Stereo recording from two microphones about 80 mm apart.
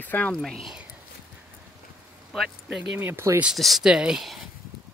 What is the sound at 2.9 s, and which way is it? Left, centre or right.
Speech, right.